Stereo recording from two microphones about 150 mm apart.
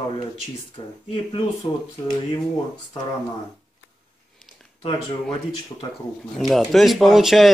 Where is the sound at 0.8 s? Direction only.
35° left (ahead or behind).